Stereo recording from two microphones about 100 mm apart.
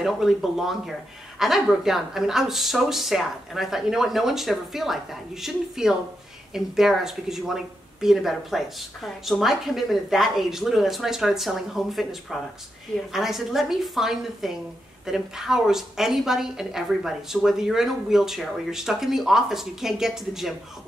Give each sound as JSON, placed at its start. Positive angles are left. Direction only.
{"t": 0.0, "sound": "speech", "side_deg": -5}